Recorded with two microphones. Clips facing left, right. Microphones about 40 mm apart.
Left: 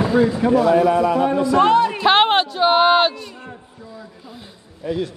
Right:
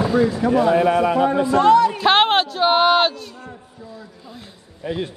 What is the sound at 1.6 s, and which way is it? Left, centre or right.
Speech, left.